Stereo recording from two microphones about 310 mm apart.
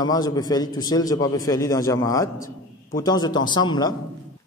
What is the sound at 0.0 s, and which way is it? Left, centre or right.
A man's voice, centre.